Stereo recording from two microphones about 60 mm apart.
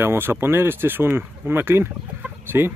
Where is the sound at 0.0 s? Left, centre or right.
Right.